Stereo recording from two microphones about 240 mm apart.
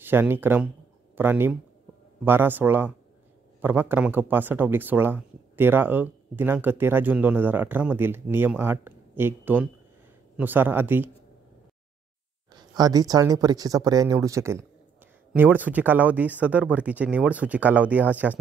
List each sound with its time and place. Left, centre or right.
0.0 s speech: centre
12.5 s speech: centre